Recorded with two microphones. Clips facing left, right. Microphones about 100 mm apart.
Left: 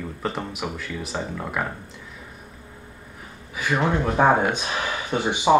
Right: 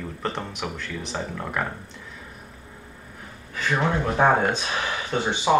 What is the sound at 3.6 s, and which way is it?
Speech, 10° left (ahead or behind).